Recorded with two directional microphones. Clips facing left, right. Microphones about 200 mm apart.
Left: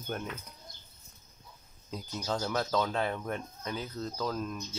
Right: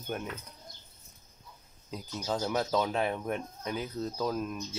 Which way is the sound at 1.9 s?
5° right (ahead or behind).